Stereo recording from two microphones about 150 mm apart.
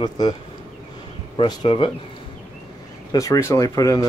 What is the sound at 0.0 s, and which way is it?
Speech, 25° left (ahead or behind).